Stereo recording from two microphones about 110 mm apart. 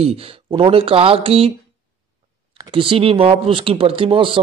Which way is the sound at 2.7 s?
55° right (ahead or behind).